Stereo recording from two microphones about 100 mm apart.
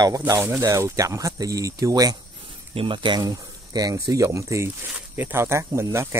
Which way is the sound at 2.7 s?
55° right (ahead or behind).